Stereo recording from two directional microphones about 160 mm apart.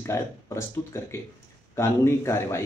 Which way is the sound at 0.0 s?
15° left (ahead or behind).